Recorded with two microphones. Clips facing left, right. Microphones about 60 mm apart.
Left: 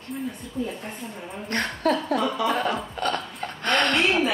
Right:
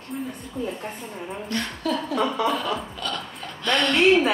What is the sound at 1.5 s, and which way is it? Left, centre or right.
A woman's voice, left.